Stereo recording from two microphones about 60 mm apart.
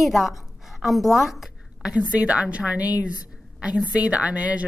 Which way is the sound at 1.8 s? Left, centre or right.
Centre.